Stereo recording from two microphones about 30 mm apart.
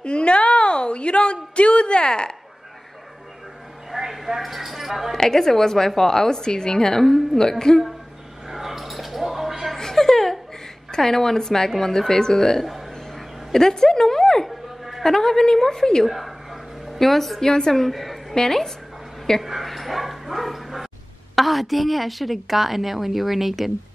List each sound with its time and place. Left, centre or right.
0.0 s a sound: left
3.9 s speech: centre
5.1 s a woman's voice: centre
8.5 s a sound: centre
9.8 s a sound: centre
10.9 s a woman's voice: centre
13.5 s music: centre
15.0 s a woman's voice: centre
16.1 s a woman's voice: centre
17.5 s a woman's voice: centre
17.9 s a woman's voice: centre
19.4 s bow-wow: centre
21.4 s a woman's voice: centre